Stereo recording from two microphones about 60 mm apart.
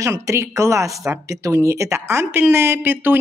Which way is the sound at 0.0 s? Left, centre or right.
Right.